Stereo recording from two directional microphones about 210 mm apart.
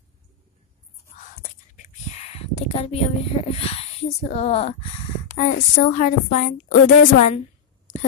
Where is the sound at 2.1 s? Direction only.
30° left (ahead or behind).